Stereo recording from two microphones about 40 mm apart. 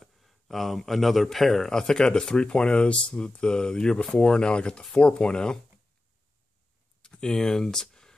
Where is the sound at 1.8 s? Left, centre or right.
Centre.